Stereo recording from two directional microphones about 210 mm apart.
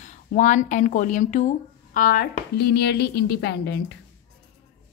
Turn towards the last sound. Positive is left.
turn(degrees=55)  # may be behind; listen again after turning